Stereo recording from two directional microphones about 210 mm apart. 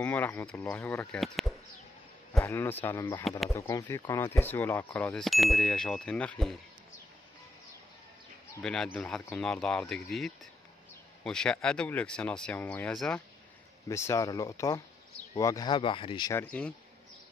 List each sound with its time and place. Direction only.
0.0 s speech: 10° left (ahead or behind)
2.4 s speech: 10° left (ahead or behind)
3.3 s speech: centre (ahead or behind)
3.5 s speech: 15° left (ahead or behind)
8.6 s speech: 5° left (ahead or behind)